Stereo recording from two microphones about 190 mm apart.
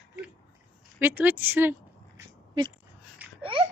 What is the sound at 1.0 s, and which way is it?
Speech, 10° right (ahead or behind).